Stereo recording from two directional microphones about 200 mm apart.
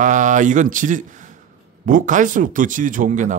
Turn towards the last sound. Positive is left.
turn(degrees=-40)  # may be behind; listen again after turning